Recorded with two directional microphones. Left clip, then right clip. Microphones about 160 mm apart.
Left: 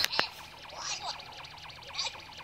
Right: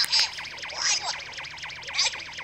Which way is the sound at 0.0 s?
55° right (ahead or behind).